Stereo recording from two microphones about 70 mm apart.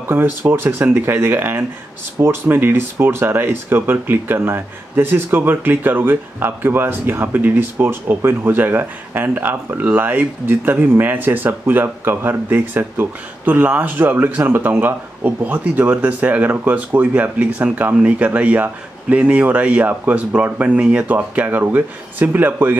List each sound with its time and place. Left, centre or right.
0.1 s speech: right
2.1 s speech: right